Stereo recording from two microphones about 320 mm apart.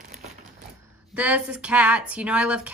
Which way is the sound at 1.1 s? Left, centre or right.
Centre.